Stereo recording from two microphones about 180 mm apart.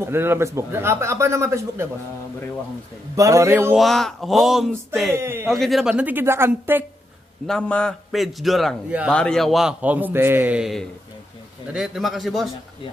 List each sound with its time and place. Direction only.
0.0 s a man's voice: 15° right (ahead or behind)
3.2 s a man's voice: 15° right (ahead or behind)
3.7 s a man's voice: centre (ahead or behind)
5.1 s a man's voice: 15° right (ahead or behind)
5.5 s a man's voice: centre (ahead or behind)
7.4 s a man's voice: 5° left (ahead or behind)